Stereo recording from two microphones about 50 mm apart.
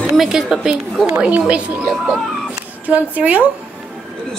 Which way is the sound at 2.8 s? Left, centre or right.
Right.